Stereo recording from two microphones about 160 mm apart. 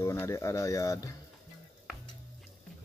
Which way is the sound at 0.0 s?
15° left (ahead or behind).